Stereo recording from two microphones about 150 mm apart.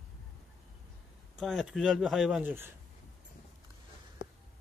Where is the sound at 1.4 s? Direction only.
Centre (ahead or behind).